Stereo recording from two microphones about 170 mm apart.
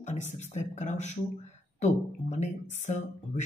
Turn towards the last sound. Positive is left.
turn(degrees=45)  # may be behind; listen again after turning